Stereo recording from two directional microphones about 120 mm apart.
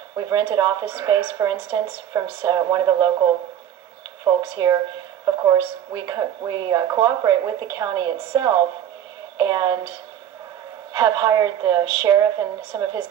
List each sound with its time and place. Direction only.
0.1 s a woman's voice: 35° right (ahead or behind)
4.2 s a woman's voice: 40° right (ahead or behind)
5.2 s a woman's voice: 30° right (ahead or behind)